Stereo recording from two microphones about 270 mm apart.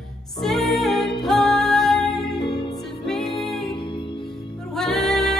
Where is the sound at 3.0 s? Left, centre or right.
Centre.